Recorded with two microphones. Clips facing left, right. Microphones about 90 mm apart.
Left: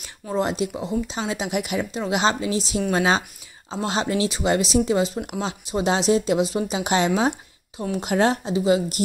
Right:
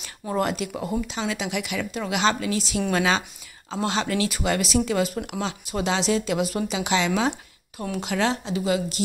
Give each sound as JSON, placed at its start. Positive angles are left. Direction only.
{"t": 0.4, "sound": "speech", "side_deg": 30}
{"t": 6.8, "sound": "speech", "side_deg": 40}